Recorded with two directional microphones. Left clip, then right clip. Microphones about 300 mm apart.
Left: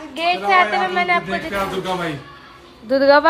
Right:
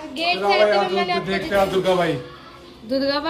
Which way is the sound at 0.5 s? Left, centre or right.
Centre.